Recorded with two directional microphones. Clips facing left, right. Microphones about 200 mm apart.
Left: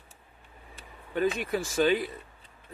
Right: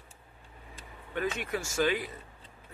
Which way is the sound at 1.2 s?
35° left (ahead or behind).